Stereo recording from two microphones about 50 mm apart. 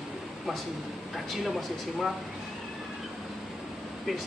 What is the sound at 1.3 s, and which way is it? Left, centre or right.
Speech, centre.